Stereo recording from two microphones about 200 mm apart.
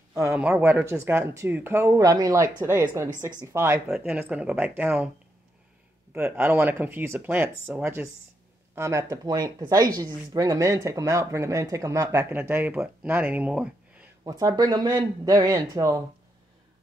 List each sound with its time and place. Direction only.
0.3 s speech: 5° right (ahead or behind)
3.8 s speech: centre (ahead or behind)
6.1 s speech: 10° right (ahead or behind)
14.2 s speech: 20° right (ahead or behind)